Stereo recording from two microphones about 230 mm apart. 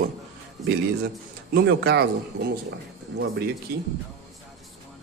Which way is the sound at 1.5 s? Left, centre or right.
Right.